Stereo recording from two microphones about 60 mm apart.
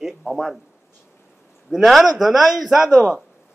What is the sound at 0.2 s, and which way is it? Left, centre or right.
Speech, centre.